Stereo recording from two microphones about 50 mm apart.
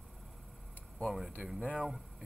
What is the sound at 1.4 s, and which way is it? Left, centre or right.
Speech, centre.